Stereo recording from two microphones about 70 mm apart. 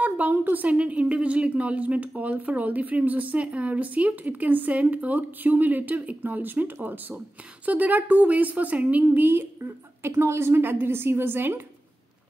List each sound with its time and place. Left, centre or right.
0.0 s a woman's voice: right